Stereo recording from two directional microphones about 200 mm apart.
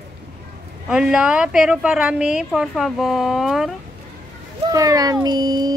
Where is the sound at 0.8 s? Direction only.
5° right (ahead or behind).